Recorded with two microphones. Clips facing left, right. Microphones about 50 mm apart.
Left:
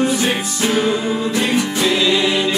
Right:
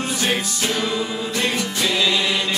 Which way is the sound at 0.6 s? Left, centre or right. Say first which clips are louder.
Left 5 dB; left.